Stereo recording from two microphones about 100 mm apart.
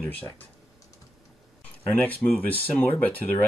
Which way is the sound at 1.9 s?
20° left (ahead or behind).